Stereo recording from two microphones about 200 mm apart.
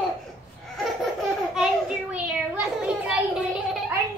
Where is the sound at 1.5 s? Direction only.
5° right (ahead or behind).